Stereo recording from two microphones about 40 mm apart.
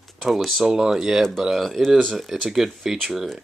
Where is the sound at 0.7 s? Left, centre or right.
Centre.